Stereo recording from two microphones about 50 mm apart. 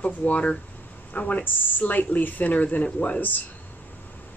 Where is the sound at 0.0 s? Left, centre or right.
Left.